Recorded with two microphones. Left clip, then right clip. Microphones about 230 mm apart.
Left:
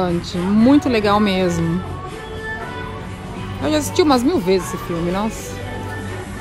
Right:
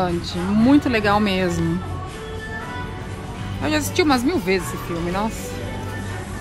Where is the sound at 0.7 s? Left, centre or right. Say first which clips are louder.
Left 2 dB; left.